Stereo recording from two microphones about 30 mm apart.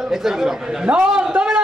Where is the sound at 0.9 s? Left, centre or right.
Right.